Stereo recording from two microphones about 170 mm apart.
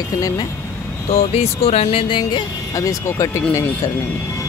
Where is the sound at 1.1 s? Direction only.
35° left (ahead or behind); by 3.4 s 15° left (ahead or behind).